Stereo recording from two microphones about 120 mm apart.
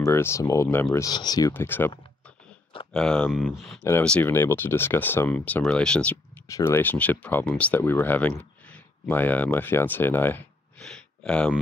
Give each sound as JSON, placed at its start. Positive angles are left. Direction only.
{"t": 0.0, "sound": "speech", "side_deg": 20}
{"t": 1.5, "sound": "speech", "side_deg": 15}
{"t": 2.9, "sound": "speech", "side_deg": 5}
{"t": 4.3, "sound": "speech", "side_deg": 20}
{"t": 6.4, "sound": "speech", "side_deg": 25}
{"t": 10.8, "sound": "a sound", "side_deg": 5}